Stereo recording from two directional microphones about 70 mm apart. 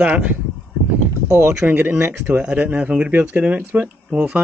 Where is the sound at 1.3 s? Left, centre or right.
Right.